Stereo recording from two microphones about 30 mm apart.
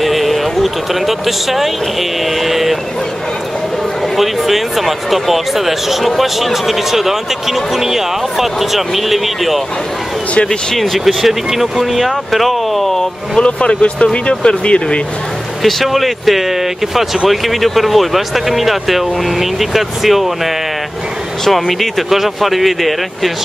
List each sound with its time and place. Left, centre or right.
0.0 s speech: centre
4.2 s speech: centre
10.8 s speech: centre
13.4 s speech: left
15.6 s speech: centre